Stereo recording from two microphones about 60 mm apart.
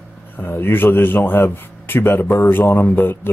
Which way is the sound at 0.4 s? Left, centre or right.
Left.